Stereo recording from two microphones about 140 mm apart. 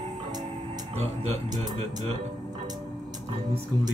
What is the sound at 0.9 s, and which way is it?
Speech, 50° right (ahead or behind).